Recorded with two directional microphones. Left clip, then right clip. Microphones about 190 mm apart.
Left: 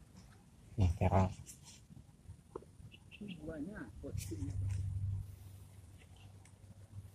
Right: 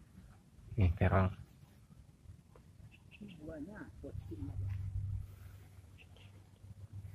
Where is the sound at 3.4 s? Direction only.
30° right (ahead or behind).